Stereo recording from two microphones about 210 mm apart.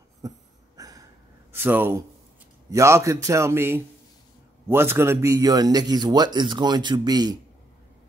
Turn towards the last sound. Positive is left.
turn(degrees=-20)  # may be behind; listen again after turning